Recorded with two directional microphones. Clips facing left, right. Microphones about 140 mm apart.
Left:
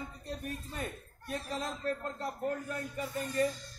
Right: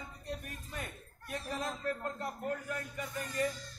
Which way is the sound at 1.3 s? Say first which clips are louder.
Left 1 dB; 30° left (ahead or behind).